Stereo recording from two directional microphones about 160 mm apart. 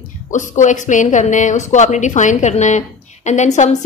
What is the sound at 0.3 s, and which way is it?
Speech, 50° left (ahead or behind).